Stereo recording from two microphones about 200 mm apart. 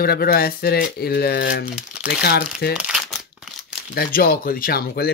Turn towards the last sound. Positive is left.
turn(degrees=50)  # may be behind; listen again after turning